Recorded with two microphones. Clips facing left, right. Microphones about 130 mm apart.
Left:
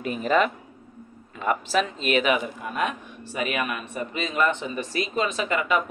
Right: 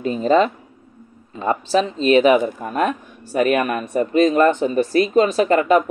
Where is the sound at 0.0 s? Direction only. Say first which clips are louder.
Right 6 dB; 30° right (ahead or behind).